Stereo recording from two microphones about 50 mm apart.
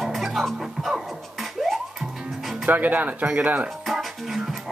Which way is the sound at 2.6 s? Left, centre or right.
Right.